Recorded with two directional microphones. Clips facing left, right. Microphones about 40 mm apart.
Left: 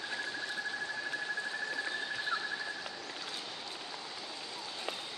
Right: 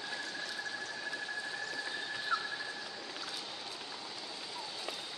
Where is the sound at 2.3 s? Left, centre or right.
Centre.